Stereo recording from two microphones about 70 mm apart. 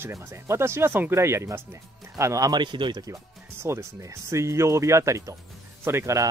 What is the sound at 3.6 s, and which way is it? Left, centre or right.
Speech, right.